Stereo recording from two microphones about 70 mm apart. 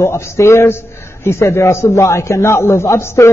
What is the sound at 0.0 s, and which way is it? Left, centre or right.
A man's voice, left.